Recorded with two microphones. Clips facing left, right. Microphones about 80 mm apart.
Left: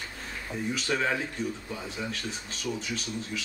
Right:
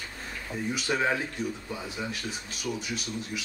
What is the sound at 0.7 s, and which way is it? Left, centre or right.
Speech, centre.